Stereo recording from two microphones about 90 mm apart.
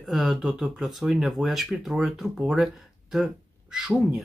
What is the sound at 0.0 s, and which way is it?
Speech, centre (ahead or behind).